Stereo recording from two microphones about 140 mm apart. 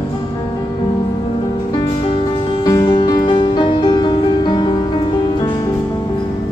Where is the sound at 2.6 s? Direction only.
30° left (ahead or behind).